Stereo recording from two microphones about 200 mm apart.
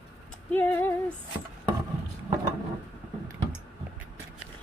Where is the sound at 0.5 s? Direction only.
10° left (ahead or behind).